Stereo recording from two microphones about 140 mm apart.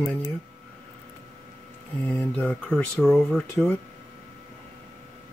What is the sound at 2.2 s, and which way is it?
Speech, 10° left (ahead or behind).